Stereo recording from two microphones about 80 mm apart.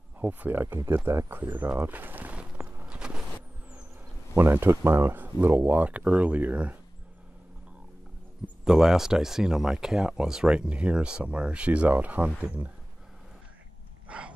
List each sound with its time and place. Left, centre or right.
0.2 s speech: right
2.9 s vehicle: centre
4.4 s speech: right
8.6 s speech: centre
14.0 s a sound: centre